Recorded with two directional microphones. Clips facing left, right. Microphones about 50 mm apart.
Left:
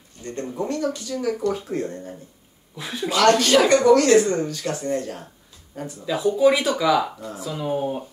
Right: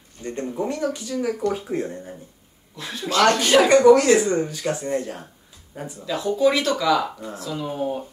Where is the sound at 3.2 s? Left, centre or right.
Centre.